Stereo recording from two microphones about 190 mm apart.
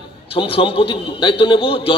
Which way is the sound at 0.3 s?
30° left (ahead or behind).